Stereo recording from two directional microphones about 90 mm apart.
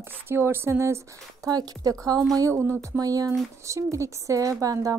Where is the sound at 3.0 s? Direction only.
40° right (ahead or behind).